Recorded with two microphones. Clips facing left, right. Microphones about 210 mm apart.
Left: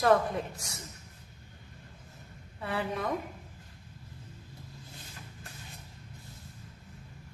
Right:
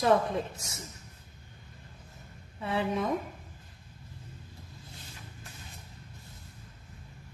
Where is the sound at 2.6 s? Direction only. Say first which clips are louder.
Right 3 dB; 25° right (ahead or behind).